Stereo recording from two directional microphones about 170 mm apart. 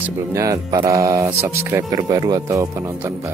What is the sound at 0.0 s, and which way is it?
Speech, 15° right (ahead or behind).